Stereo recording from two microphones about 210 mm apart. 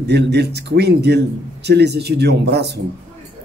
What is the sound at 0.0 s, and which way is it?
A man's voice, 50° right (ahead or behind).